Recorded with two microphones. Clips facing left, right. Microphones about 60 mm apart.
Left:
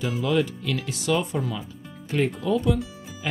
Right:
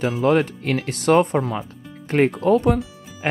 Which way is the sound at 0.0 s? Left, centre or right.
Right.